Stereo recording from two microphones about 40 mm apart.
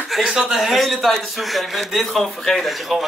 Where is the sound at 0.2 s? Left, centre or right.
Centre.